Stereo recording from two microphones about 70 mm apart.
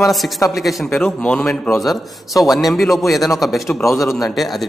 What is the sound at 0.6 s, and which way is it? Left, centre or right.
Speech, centre.